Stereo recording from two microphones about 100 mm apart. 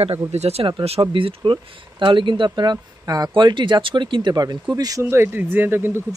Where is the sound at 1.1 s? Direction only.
55° right (ahead or behind); by 5.0 s 40° right (ahead or behind).